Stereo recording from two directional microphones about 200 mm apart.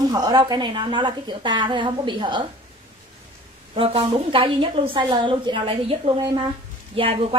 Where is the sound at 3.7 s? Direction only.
25° right (ahead or behind).